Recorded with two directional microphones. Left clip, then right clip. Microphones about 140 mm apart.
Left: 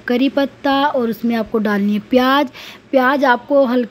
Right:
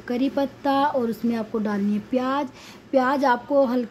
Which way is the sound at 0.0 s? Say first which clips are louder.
Left 8 dB; 25° left (ahead or behind).